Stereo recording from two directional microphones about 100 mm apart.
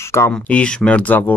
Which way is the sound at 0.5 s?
10° left (ahead or behind).